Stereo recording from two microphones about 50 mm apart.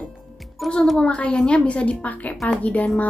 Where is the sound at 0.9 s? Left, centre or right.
Left.